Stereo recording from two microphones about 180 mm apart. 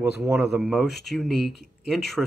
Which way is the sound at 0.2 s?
15° right (ahead or behind).